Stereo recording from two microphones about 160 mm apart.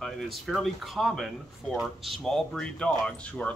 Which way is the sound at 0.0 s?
Centre (ahead or behind).